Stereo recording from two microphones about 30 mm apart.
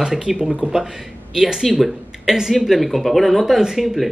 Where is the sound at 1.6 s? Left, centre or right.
Centre.